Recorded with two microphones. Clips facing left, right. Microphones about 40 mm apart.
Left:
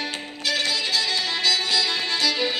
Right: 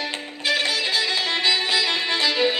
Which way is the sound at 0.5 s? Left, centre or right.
Right.